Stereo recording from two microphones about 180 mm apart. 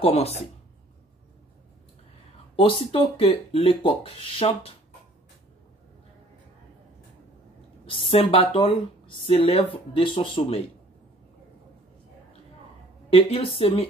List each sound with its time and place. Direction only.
0.0 s speech: 35° left (ahead or behind)
2.5 s speech: 30° left (ahead or behind)
7.8 s speech: 30° left (ahead or behind)
13.1 s speech: 30° left (ahead or behind)